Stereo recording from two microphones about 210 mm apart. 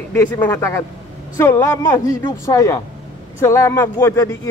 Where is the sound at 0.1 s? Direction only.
10° left (ahead or behind).